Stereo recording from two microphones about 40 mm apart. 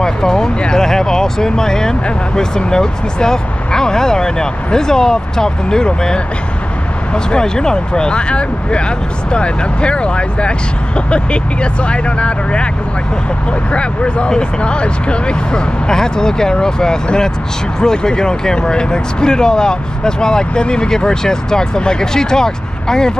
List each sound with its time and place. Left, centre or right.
0.0 s a sound: centre
0.6 s speech: centre
7.2 s speech: centre
13.7 s speech: left